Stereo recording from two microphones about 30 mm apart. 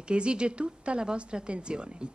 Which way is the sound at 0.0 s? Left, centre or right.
Right.